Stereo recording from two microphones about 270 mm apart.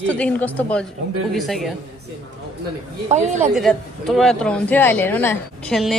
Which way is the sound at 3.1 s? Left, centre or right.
Right.